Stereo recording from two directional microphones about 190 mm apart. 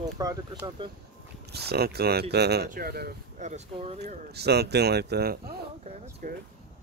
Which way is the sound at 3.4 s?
35° right (ahead or behind).